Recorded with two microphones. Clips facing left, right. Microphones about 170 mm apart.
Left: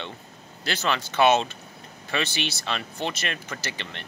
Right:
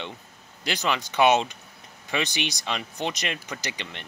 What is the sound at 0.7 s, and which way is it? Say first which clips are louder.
Speech: even; 15° right (ahead or behind).